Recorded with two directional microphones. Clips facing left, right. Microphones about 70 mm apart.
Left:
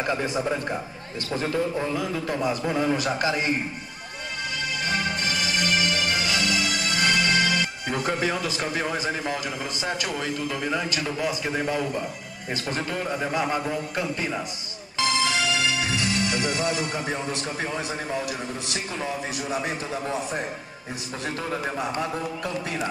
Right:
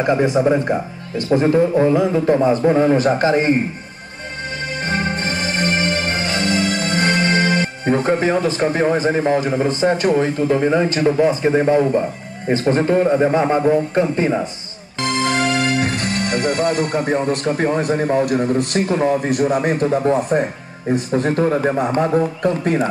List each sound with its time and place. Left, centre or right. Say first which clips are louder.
0.0 s a man's voice: right 10 dB; right
4.8 s music: right 6 dB; right
15.0 s a man's voice: right 5 dB; right